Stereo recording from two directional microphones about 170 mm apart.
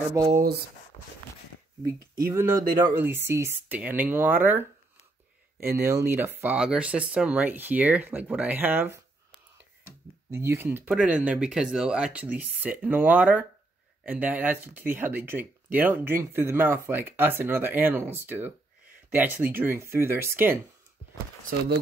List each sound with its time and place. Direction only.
0.2 s speech: 20° right (ahead or behind)
2.0 s speech: 20° right (ahead or behind)
10.3 s speech: 15° right (ahead or behind)